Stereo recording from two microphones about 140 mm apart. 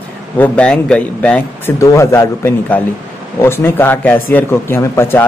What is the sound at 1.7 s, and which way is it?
Speech, 20° left (ahead or behind).